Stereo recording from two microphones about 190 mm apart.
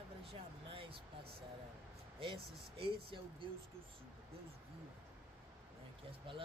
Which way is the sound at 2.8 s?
25° right (ahead or behind).